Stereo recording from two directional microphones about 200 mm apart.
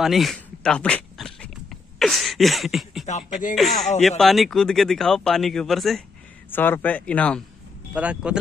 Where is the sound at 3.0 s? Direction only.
35° left (ahead or behind).